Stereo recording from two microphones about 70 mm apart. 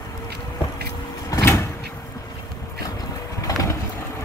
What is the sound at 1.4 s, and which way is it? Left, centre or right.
Vehicle, left.